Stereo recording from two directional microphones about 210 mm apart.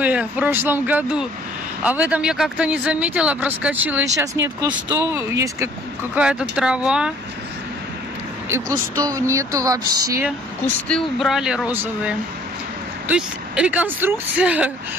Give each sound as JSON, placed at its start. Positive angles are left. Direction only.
{"t": 0.0, "sound": "speech", "side_deg": -5}
{"t": 8.5, "sound": "speech", "side_deg": -10}
{"t": 10.9, "sound": "speech", "side_deg": 0}